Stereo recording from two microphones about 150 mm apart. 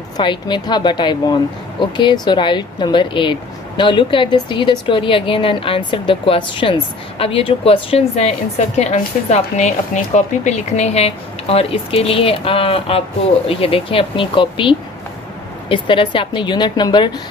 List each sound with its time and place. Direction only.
0.2 s speech: 30° left (ahead or behind)